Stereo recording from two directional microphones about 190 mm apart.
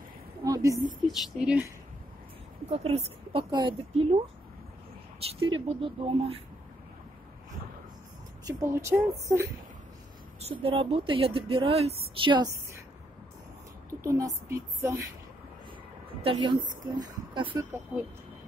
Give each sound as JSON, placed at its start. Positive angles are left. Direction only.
{"t": 0.4, "sound": "a sound", "side_deg": -15}
{"t": 1.0, "sound": "speech", "side_deg": 0}
{"t": 2.7, "sound": "a woman's voice", "side_deg": -30}
{"t": 5.2, "sound": "a woman's voice", "side_deg": -30}
{"t": 8.5, "sound": "a woman's voice", "side_deg": -15}
{"t": 10.4, "sound": "speech", "side_deg": -30}
{"t": 13.8, "sound": "a woman's voice", "side_deg": -15}
{"t": 16.2, "sound": "speech", "side_deg": -25}
{"t": 17.5, "sound": "a woman's voice", "side_deg": -10}